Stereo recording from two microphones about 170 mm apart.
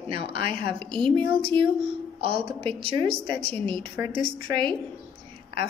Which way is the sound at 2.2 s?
35° right (ahead or behind).